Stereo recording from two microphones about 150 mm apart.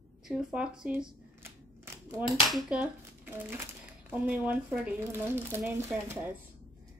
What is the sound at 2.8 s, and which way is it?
A woman's voice, 15° right (ahead or behind).